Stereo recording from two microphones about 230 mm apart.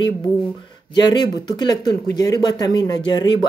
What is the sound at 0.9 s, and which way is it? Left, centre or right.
Speech, centre.